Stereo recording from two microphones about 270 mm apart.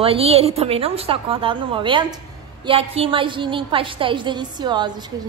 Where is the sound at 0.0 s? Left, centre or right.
Right.